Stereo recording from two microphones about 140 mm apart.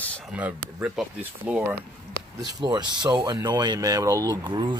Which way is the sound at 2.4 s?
30° right (ahead or behind).